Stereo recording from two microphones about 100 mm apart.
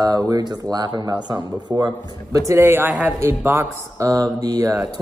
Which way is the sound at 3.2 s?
25° right (ahead or behind).